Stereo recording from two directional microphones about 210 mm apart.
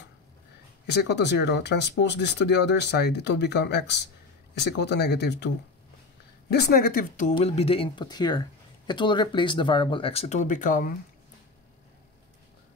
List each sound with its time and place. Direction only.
0.8 s speech: 55° left (ahead or behind)
6.5 s speech: 50° left (ahead or behind)
7.3 s speech: 30° left (ahead or behind)